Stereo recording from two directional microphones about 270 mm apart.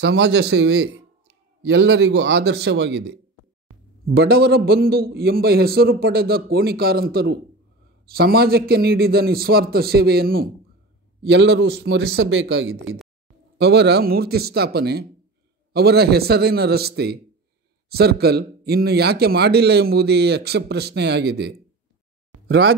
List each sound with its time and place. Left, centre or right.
0.0 s a man's voice: right